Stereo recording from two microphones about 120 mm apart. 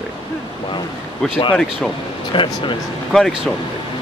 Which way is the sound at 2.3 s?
40° left (ahead or behind).